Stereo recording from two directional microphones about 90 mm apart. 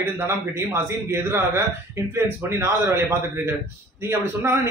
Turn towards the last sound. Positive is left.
turn(degrees=-30)  # may be behind; listen again after turning